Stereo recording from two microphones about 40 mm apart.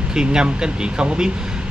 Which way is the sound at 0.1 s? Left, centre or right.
Centre.